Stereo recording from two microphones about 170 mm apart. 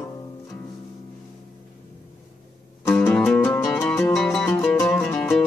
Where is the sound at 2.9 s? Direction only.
10° left (ahead or behind).